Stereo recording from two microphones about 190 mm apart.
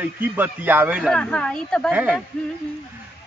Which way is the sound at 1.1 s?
5° left (ahead or behind).